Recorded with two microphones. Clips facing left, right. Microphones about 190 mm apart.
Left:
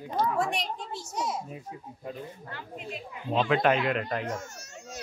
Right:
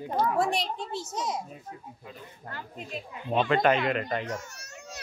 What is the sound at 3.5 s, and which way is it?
Speech, centre (ahead or behind).